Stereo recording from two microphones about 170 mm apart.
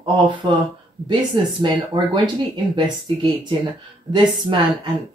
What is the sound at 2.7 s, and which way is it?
Speech, 30° right (ahead or behind).